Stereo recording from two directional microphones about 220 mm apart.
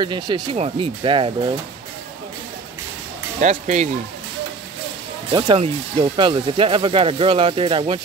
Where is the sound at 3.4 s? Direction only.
35° right (ahead or behind).